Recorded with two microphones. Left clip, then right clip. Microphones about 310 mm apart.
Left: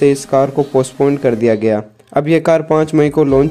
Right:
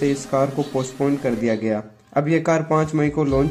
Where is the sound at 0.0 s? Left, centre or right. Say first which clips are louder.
Left 9 dB; left.